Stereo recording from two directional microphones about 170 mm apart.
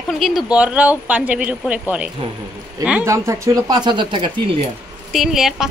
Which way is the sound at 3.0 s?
15° right (ahead or behind).